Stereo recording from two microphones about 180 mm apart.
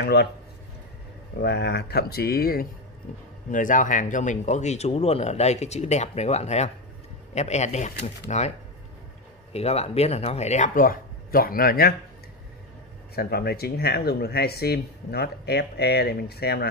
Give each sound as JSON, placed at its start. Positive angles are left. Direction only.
{"t": 0.0, "sound": "speech", "side_deg": 65}
{"t": 1.4, "sound": "speech", "side_deg": 65}
{"t": 13.1, "sound": "speech", "side_deg": 60}